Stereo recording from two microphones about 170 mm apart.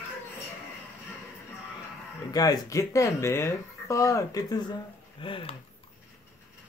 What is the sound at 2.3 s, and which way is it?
Speech, 20° left (ahead or behind).